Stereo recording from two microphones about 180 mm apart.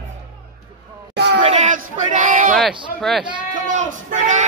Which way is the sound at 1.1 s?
75° right (ahead or behind).